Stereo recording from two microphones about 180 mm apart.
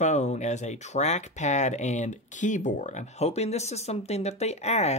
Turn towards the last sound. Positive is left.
turn(degrees=35)  # may be behind; listen again after turning